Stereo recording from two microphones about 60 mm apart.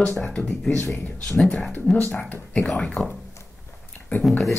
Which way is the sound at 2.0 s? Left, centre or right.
Left.